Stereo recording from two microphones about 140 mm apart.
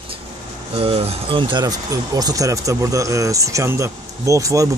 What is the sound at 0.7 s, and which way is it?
Speech, 45° right (ahead or behind).